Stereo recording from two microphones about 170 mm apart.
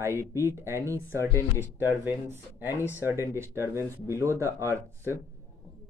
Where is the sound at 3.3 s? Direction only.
15° right (ahead or behind).